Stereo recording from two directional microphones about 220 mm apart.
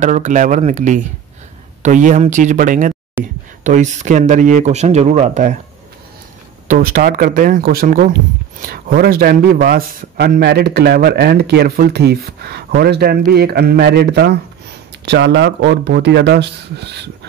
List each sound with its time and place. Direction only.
0.0 s speech: 35° right (ahead or behind)
6.7 s speech: 40° right (ahead or behind)